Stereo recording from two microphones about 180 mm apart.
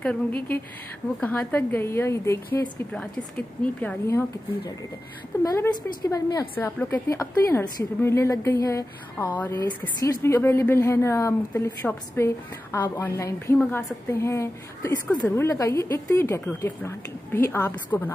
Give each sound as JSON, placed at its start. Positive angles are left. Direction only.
{"t": 0.0, "sound": "a woman's voice", "side_deg": 10}
{"t": 5.4, "sound": "a woman's voice", "side_deg": 15}